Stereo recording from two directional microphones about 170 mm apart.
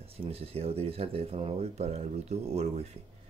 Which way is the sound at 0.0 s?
35° right (ahead or behind).